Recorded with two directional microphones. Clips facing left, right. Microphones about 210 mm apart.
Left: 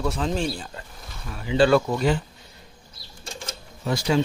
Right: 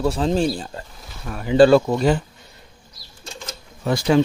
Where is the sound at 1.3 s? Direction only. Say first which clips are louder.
Right 7 dB; 55° right (ahead or behind).